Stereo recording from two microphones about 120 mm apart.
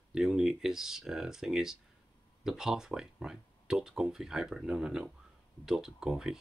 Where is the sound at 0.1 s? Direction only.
5° right (ahead or behind).